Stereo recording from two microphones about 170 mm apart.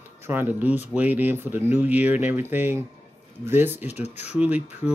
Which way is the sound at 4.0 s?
40° left (ahead or behind).